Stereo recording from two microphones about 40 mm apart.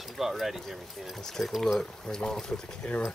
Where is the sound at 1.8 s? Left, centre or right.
Centre.